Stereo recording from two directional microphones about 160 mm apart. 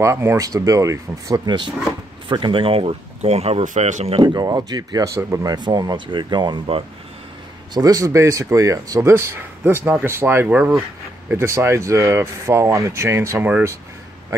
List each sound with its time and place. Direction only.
0.0 s speech: 15° right (ahead or behind); by 4.2 s 45° right (ahead or behind)
4.2 s speech: 25° right (ahead or behind)